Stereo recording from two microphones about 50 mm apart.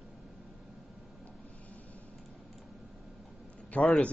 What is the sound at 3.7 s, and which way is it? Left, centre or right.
Speech, left.